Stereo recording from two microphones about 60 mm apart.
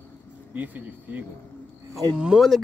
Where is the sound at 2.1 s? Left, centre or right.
Centre.